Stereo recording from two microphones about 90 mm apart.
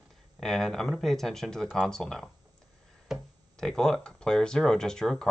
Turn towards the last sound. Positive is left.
turn(degrees=5)  # may be behind; listen again after turning